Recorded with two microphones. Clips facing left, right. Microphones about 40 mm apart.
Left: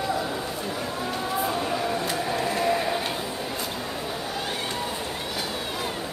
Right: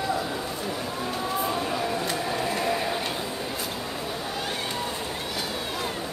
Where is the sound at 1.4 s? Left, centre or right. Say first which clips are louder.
Left 2 dB; centre.